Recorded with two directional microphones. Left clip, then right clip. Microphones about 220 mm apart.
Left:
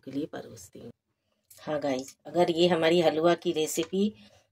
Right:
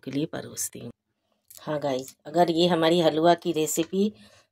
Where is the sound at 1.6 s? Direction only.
15° right (ahead or behind).